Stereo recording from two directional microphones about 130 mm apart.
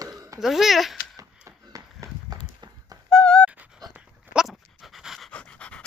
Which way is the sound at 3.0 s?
5° left (ahead or behind).